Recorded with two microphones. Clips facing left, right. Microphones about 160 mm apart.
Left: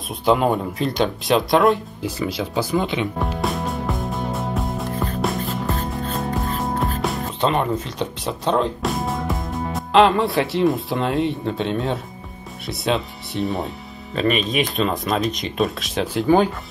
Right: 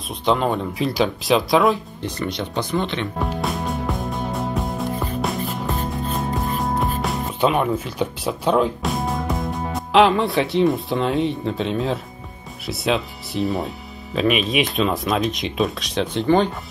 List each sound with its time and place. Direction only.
0.2 s speech: 5° left (ahead or behind)
5.2 s music: centre (ahead or behind)
6.6 s speech: centre (ahead or behind)